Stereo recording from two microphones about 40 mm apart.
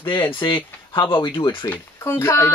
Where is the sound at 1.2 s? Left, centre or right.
Left.